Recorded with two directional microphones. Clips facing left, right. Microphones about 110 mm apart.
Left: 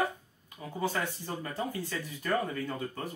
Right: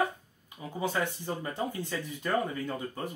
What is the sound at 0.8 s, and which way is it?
Speech, 20° right (ahead or behind).